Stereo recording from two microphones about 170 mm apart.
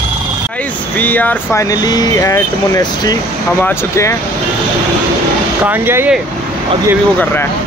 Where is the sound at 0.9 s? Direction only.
10° left (ahead or behind).